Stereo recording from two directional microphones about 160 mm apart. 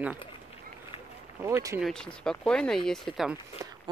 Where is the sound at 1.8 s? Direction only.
Centre (ahead or behind).